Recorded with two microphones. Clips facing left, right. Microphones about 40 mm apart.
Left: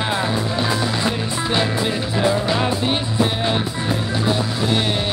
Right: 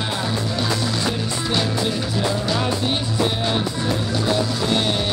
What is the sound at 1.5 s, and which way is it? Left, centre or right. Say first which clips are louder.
Music: left 2 dB; left.